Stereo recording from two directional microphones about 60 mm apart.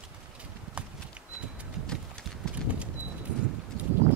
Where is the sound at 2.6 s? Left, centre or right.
Centre.